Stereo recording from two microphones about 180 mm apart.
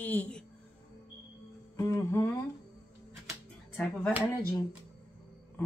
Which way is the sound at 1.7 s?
15° left (ahead or behind).